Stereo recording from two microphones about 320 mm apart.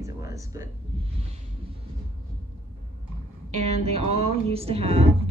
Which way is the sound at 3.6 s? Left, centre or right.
Centre.